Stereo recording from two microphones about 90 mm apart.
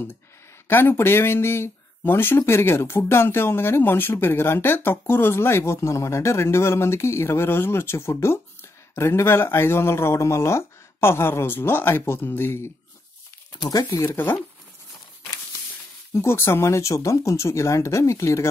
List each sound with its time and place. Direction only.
0.7 s speech: 25° left (ahead or behind)
13.7 s speech: 40° left (ahead or behind); by 14.4 s 25° left (ahead or behind)
16.1 s speech: 30° left (ahead or behind)